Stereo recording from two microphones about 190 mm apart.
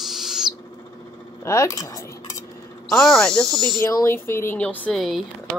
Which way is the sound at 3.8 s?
15° left (ahead or behind).